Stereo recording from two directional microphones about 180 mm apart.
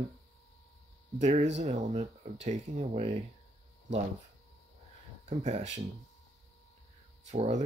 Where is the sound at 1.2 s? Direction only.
40° right (ahead or behind).